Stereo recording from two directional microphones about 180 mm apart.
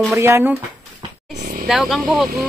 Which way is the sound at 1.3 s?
45° right (ahead or behind).